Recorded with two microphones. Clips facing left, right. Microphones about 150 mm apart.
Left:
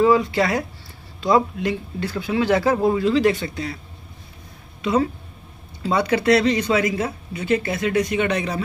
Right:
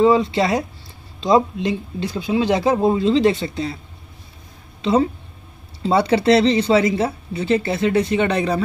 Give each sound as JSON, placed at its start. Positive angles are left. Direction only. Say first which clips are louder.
{"t": 0.0, "sound": "speech", "louder": "right 2 dB", "side_deg": -25}
{"t": 4.8, "sound": "speech", "louder": "right 3 dB", "side_deg": -30}